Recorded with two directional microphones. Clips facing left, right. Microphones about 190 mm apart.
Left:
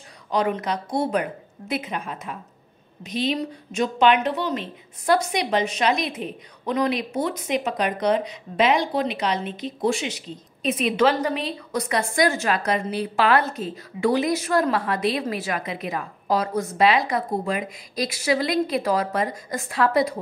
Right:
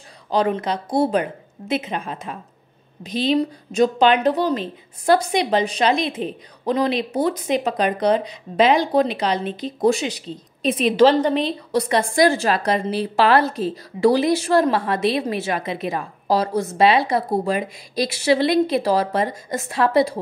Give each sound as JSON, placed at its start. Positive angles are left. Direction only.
{"t": 0.3, "sound": "a woman's voice", "side_deg": -30}